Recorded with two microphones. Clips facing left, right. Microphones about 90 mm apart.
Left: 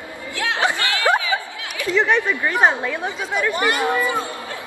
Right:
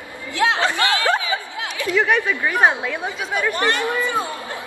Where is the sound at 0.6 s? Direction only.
15° left (ahead or behind).